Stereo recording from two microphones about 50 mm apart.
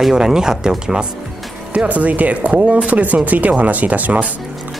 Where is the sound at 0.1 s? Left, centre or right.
Centre.